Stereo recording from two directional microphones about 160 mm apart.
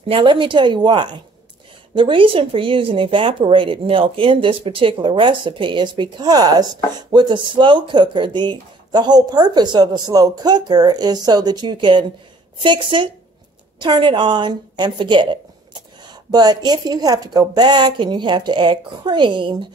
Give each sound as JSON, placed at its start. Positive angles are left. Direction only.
{"t": 0.1, "sound": "a woman's voice", "side_deg": -30}